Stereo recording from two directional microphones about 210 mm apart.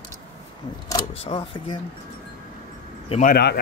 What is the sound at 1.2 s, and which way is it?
Speech, 25° left (ahead or behind).